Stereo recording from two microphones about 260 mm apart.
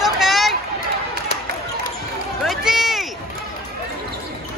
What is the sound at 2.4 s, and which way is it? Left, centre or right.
Run, centre.